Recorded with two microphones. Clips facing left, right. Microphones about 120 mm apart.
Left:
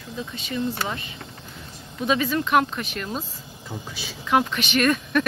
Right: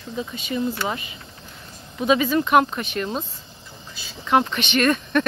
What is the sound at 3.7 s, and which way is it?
Speech, 90° left.